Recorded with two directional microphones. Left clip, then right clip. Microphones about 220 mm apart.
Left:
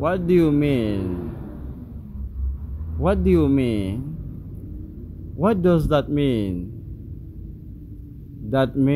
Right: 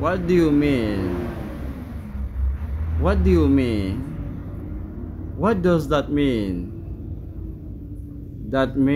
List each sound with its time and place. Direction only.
0.0 s a man's voice: 30° left (ahead or behind)
3.0 s a man's voice: 25° left (ahead or behind)
5.4 s a man's voice: 30° left (ahead or behind)
8.5 s a man's voice: 30° left (ahead or behind)